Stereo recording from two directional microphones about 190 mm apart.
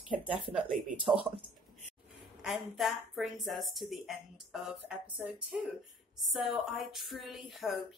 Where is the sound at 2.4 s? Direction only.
Centre (ahead or behind).